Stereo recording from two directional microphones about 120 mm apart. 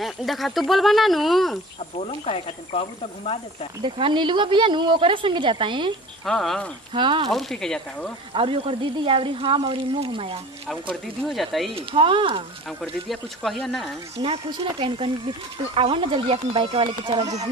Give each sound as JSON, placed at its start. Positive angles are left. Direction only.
{"t": 0.0, "sound": "speech", "side_deg": 0}
{"t": 2.0, "sound": "speech", "side_deg": 55}
{"t": 3.8, "sound": "speech", "side_deg": -40}
{"t": 6.2, "sound": "speech", "side_deg": 5}
{"t": 6.9, "sound": "speech", "side_deg": -45}
{"t": 7.2, "sound": "speech", "side_deg": 0}
{"t": 8.3, "sound": "speech", "side_deg": -45}
{"t": 10.9, "sound": "speech", "side_deg": 0}
{"t": 11.7, "sound": "speech", "side_deg": -50}
{"t": 13.1, "sound": "speech", "side_deg": 0}
{"t": 14.1, "sound": "speech", "side_deg": -60}
{"t": 14.5, "sound": "speech", "side_deg": -45}